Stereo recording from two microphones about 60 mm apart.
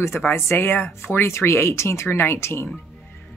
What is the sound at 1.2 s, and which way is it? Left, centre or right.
A woman's voice, left.